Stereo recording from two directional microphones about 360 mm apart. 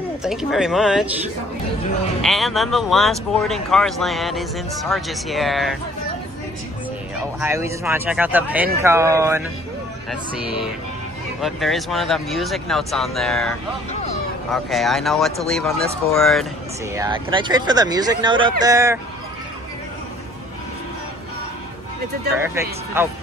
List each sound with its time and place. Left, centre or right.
0.2 s speech: centre
2.2 s speech: centre
7.3 s speech: centre
11.4 s speech: centre
16.9 s speech: centre
22.4 s speech: centre